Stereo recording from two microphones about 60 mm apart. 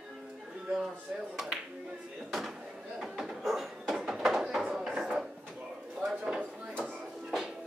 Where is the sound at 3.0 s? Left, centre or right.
Centre.